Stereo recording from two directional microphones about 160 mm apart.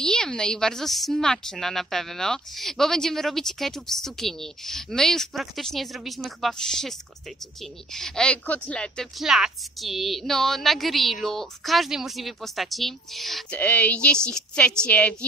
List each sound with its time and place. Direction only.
0.0 s speech: 5° left (ahead or behind)